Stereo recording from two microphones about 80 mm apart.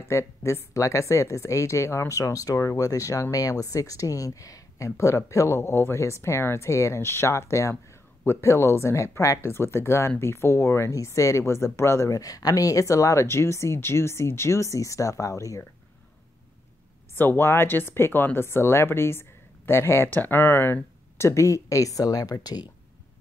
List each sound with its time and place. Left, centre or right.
0.1 s speech: left
17.1 s speech: left